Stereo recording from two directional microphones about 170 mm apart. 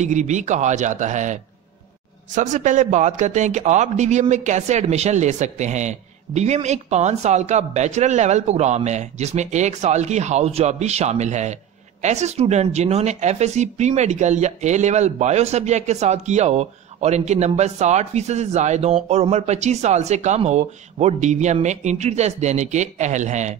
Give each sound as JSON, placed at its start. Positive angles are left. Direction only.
{"t": 0.0, "sound": "a man's voice", "side_deg": -45}